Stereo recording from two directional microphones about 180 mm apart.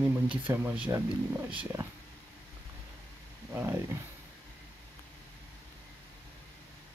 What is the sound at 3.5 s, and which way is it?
Speech, 10° right (ahead or behind).